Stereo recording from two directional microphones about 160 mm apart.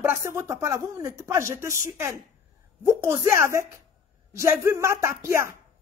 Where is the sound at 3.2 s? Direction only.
15° right (ahead or behind).